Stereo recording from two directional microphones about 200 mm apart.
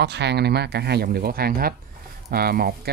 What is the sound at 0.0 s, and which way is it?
Speech, 55° right (ahead or behind).